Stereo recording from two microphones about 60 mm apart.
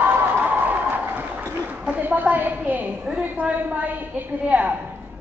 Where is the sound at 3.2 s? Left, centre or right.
Right.